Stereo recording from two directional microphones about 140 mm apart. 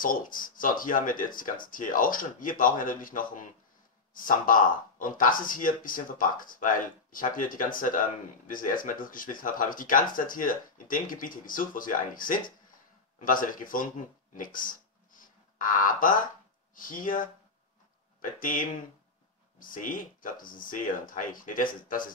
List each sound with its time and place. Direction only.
0.0 s speech: 80° left
14.3 s a sound: 75° left (ahead or behind)
16.7 s speech: 75° left (ahead or behind)
18.4 s speech: 75° left (ahead or behind)